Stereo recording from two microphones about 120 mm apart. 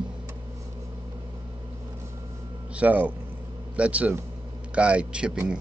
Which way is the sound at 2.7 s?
15° right (ahead or behind).